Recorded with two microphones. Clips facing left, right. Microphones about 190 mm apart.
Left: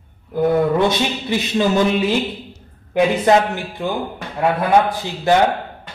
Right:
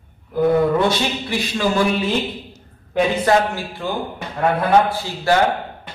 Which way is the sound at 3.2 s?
20° left (ahead or behind).